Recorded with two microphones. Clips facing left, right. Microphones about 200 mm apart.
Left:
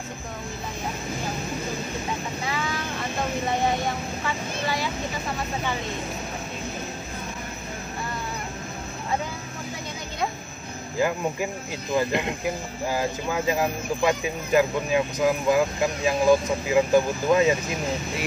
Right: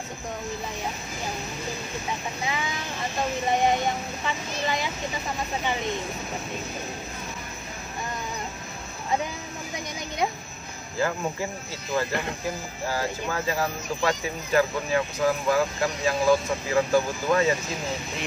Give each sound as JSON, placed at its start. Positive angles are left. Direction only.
{"t": 11.0, "sound": "speech", "side_deg": 15}